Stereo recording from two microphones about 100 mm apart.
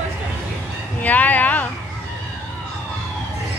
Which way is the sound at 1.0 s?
15° left (ahead or behind).